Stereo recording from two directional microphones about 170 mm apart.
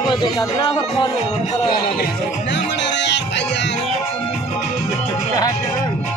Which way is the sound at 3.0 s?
90° left.